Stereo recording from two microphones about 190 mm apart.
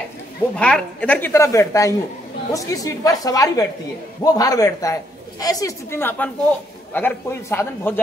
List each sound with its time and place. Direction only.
0.6 s a woman's voice: 5° left (ahead or behind)